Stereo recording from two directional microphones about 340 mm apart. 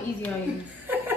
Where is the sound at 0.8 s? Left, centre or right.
Centre.